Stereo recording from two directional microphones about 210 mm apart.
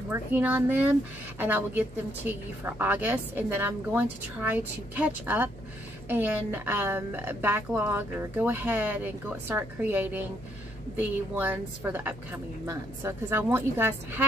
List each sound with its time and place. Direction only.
0.1 s a woman's voice: 10° right (ahead or behind)